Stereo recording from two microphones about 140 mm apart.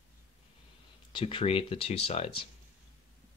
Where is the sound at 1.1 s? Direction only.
40° left (ahead or behind).